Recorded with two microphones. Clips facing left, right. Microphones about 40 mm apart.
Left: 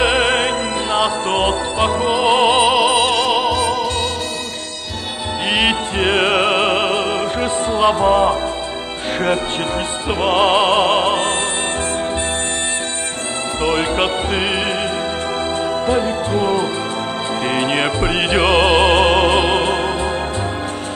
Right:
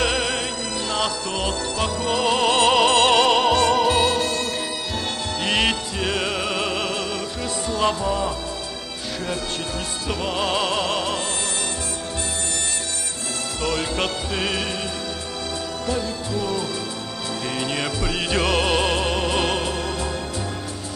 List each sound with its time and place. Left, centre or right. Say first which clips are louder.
0.0 s music: left 8 dB; left; by 4.1 s centre
5.5 s music: left 5 dB; left
5.9 s music: left 9 dB; left
10.0 s music: left 10 dB; left
13.6 s music: left 7 dB; left
15.9 s music: left 6 dB; left